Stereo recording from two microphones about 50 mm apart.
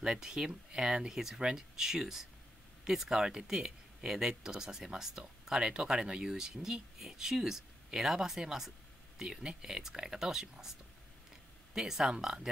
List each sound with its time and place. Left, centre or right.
0.0 s speech: centre